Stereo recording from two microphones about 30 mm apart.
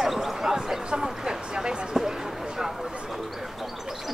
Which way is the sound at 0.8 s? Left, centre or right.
Right.